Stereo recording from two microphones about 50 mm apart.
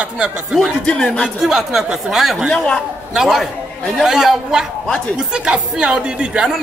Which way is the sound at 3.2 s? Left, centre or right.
Centre.